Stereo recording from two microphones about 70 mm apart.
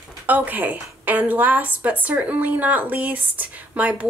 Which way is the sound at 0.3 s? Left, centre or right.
Right.